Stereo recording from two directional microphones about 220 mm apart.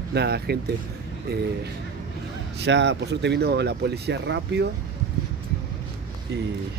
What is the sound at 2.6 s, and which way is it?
Speech, 55° right (ahead or behind).